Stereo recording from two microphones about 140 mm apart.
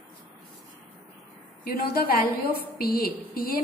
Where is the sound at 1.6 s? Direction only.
90° left.